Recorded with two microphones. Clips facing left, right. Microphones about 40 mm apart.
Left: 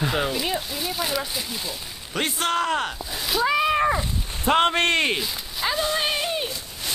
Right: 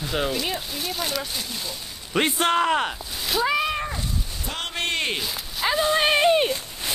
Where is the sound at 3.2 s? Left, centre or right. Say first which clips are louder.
Left 1 dB; centre.